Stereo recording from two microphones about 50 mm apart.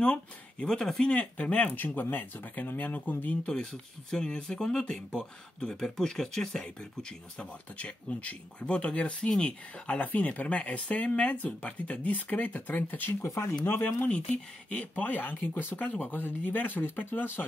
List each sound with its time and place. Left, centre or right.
0.0 s speech: left
0.7 s speech: centre
1.0 s speech: left
1.8 s speech: left
4.1 s speech: centre; by 13.3 s left
13.8 s speech: left